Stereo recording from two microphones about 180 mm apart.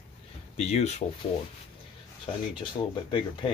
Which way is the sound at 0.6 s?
35° left (ahead or behind).